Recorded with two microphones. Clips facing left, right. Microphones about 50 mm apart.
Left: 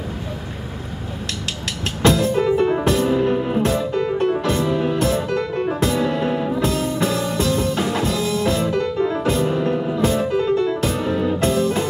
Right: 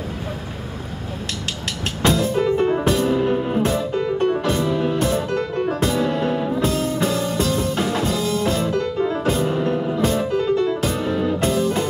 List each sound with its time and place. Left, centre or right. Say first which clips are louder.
2.0 s music: left 2 dB; centre
8.6 s music: left 1 dB; left
9.0 s piano: even; centre
9.8 s music: left 1 dB; centre
10.3 s music: left 1 dB; centre
10.7 s music: left 1 dB; centre